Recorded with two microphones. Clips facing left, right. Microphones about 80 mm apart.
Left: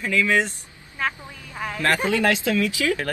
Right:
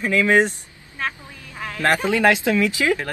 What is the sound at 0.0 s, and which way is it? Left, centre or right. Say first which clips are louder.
Speech: right 3 dB; right.